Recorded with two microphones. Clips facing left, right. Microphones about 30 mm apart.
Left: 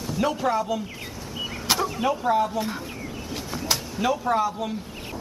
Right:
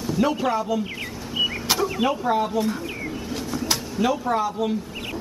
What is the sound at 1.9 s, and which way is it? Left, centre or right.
Speech, centre.